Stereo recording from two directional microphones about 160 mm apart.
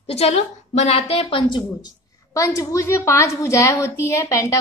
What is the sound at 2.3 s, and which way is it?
A woman's voice, 20° left (ahead or behind).